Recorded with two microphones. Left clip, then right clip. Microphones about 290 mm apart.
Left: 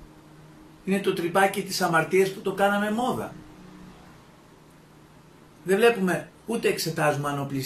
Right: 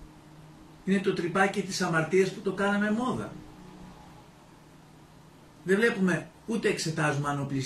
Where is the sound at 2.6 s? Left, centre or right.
Left.